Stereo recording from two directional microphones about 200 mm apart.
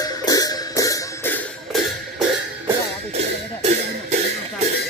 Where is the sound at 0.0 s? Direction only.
20° left (ahead or behind).